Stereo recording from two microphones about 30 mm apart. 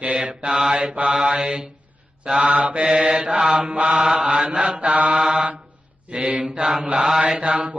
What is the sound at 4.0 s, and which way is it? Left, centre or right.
Mantra, right.